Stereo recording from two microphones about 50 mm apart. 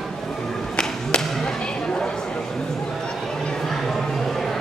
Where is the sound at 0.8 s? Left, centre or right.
Centre.